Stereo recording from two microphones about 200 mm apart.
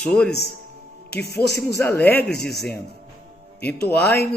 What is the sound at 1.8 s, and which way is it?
Speech, 10° left (ahead or behind).